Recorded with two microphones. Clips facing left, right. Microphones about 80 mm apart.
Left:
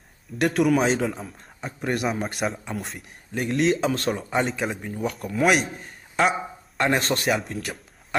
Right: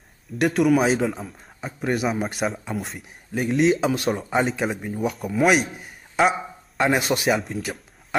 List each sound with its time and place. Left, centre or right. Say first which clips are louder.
0.4 s a man's voice: right 2 dB; centre